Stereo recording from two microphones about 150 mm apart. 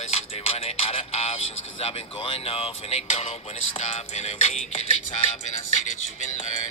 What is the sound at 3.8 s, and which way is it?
Music, 45° left (ahead or behind).